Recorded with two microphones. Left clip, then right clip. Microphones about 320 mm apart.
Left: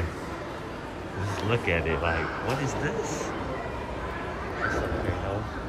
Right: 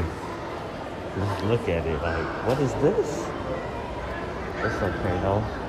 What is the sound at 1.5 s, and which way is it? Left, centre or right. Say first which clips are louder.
Speech: even; centre.